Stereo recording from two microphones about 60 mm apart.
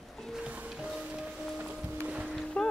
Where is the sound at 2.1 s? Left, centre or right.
Centre.